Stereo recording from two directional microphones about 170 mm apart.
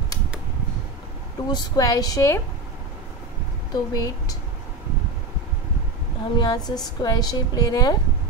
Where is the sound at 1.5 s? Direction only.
20° left (ahead or behind).